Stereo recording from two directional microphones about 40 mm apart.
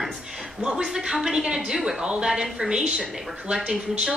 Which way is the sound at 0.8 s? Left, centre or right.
Centre.